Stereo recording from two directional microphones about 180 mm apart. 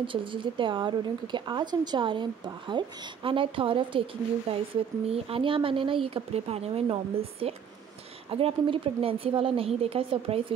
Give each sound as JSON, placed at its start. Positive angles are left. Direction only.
{"t": 0.0, "sound": "speech", "side_deg": -30}